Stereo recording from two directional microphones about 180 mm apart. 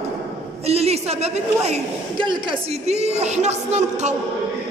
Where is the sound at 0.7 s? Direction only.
35° right (ahead or behind).